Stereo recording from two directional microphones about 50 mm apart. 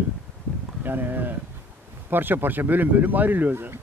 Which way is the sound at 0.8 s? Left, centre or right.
Right.